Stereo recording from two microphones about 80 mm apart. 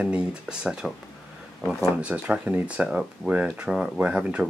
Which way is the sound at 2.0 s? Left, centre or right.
Centre.